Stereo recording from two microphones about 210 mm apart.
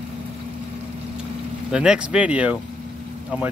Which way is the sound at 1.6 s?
5° right (ahead or behind).